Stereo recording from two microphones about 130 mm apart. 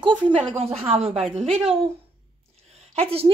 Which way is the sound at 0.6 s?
50° right (ahead or behind).